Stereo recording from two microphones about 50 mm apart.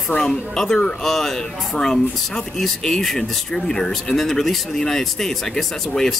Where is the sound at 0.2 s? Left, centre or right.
Centre.